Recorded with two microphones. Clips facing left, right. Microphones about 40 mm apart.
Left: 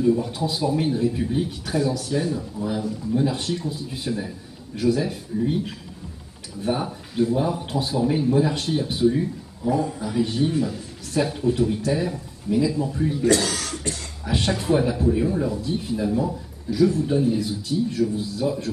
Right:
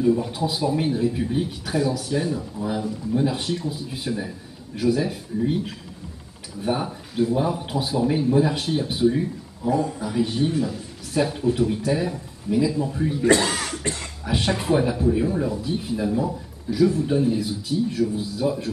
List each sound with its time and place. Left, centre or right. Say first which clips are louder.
0.0 s speech: even; centre
13.2 s speech: right 3 dB; right
14.2 s speech: even; centre